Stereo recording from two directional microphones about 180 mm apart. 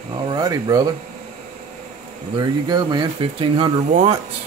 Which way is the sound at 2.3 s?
25° right (ahead or behind).